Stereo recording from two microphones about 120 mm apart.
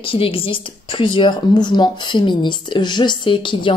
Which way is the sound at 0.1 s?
50° left (ahead or behind).